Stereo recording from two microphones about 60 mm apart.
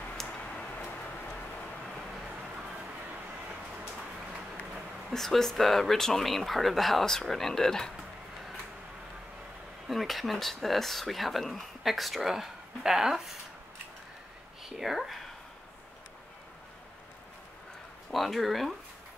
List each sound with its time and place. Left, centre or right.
0.4 s tick-tock: centre
5.1 s speech: centre
9.8 s speech: centre
14.6 s speech: centre
18.1 s speech: centre